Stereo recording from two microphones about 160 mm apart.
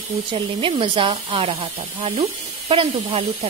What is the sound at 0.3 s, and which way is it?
Speech, 30° right (ahead or behind).